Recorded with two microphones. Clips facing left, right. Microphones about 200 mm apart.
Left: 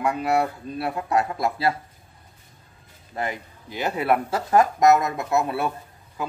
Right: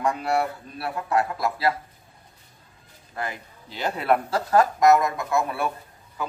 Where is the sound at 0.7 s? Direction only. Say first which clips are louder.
Left 1 dB; 20° left (ahead or behind).